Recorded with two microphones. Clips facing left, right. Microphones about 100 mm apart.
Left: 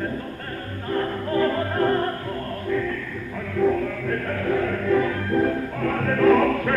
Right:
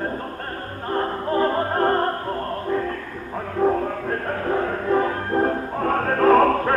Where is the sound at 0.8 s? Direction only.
35° right (ahead or behind).